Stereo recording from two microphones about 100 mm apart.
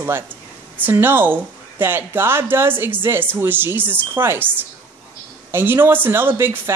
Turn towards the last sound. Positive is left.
turn(degrees=-20)  # may be behind; listen again after turning